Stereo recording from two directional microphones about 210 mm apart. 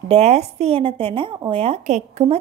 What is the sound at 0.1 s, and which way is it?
Speech, 30° right (ahead or behind).